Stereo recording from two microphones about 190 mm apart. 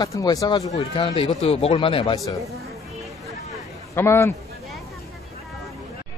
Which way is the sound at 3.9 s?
15° left (ahead or behind).